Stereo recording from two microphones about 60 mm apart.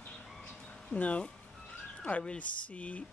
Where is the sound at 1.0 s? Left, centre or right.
Left.